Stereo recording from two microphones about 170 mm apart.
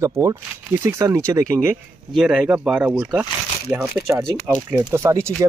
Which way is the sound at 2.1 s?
Centre (ahead or behind).